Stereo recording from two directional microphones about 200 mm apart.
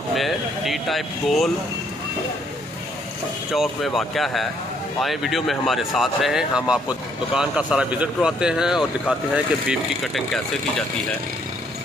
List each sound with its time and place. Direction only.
0.1 s speech: centre (ahead or behind)
3.5 s speech: centre (ahead or behind)